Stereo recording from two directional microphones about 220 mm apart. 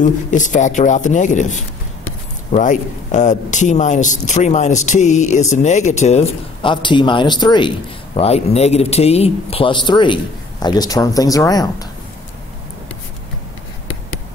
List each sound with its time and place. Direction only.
0.0 s a man's voice: 35° left (ahead or behind); by 11.9 s 15° left (ahead or behind)